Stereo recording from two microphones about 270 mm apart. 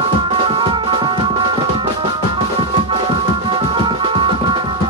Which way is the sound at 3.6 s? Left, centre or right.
Centre.